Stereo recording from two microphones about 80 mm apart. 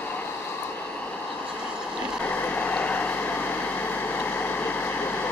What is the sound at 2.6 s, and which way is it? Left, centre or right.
Vehicle, left.